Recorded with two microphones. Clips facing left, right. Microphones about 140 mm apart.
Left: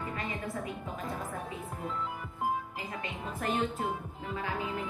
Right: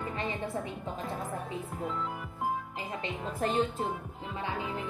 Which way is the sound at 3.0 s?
25° right (ahead or behind).